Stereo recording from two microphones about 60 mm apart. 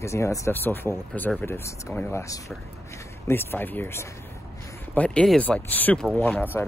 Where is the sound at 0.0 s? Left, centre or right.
Left.